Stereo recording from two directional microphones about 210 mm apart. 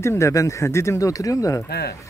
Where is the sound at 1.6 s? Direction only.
50° left (ahead or behind).